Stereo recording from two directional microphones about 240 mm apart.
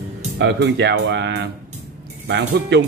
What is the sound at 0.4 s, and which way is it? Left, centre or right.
Speech, right.